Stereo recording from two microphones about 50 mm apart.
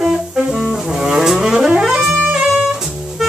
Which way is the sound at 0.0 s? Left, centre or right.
Centre.